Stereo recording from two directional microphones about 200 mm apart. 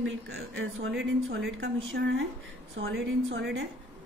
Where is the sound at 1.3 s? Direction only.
75° right (ahead or behind).